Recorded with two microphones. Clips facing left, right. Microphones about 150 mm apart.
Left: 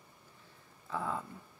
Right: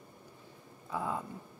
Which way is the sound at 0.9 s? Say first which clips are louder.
Right 1 dB; 15° right (ahead or behind).